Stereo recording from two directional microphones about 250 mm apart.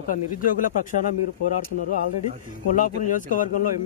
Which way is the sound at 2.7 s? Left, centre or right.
Left.